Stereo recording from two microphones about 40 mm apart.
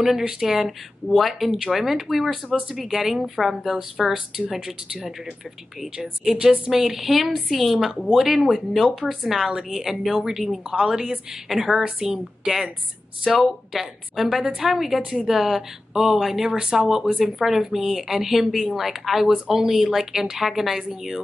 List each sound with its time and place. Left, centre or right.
0.4 s speech: centre
6.3 s a woman's voice: right
6.8 s speech: centre
10.7 s speech: centre
11.8 s a woman's voice: right
13.2 s speech: centre
19.3 s speech: centre